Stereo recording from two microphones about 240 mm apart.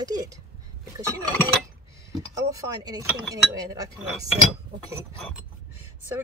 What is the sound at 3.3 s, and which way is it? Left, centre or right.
Speech, centre.